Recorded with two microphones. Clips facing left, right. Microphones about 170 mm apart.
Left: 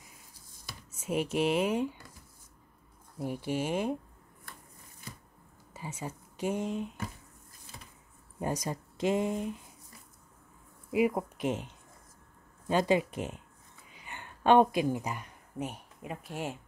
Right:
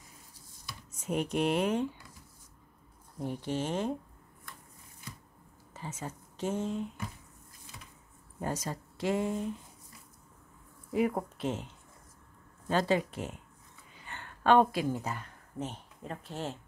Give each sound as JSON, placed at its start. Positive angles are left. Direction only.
{"t": 0.9, "sound": "speech", "side_deg": 5}
{"t": 3.2, "sound": "speech", "side_deg": 10}
{"t": 5.7, "sound": "speech", "side_deg": 10}
{"t": 8.4, "sound": "speech", "side_deg": 15}
{"t": 10.9, "sound": "speech", "side_deg": 10}